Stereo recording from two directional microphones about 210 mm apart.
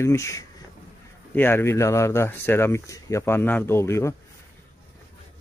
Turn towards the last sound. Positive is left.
turn(degrees=15)  # may be behind; listen again after turning